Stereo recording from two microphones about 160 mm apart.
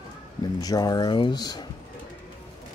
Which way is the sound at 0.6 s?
25° left (ahead or behind).